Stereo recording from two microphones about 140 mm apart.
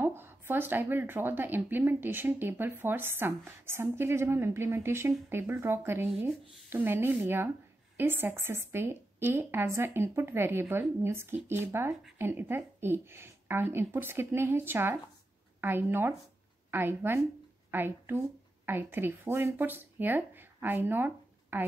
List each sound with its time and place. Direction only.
0.0 s a woman's voice: 15° right (ahead or behind)